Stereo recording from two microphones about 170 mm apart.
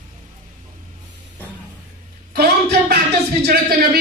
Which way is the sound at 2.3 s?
70° right (ahead or behind).